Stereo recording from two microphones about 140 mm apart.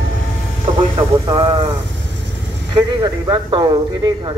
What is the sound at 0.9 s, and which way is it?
Speech, 35° right (ahead or behind).